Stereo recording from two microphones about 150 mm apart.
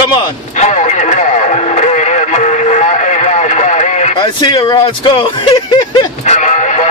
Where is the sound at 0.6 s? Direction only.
50° left (ahead or behind).